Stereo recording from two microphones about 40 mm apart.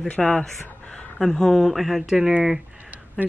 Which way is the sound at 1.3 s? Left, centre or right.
Centre.